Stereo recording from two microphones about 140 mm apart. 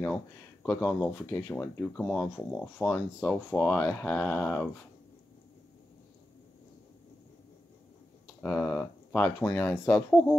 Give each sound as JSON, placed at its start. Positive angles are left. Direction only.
{"t": 0.7, "sound": "speech", "side_deg": 15}
{"t": 8.4, "sound": "speech", "side_deg": 15}
{"t": 9.9, "sound": "speech", "side_deg": 5}